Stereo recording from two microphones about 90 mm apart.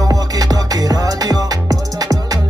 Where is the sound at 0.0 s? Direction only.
45° right (ahead or behind).